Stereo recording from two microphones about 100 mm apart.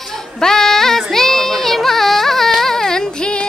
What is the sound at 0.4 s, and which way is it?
Child singing, 5° left (ahead or behind).